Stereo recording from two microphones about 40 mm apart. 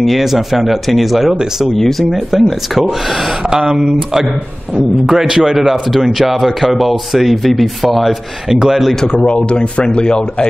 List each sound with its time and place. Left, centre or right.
0.0 s speech: centre
2.0 s a man's voice: centre
3.4 s a man's voice: centre
6.1 s speech: centre
9.0 s a man's voice: left